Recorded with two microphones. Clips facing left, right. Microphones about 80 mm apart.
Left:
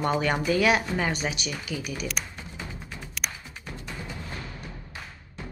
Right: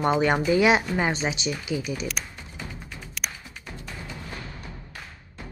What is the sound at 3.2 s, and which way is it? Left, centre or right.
Music, centre.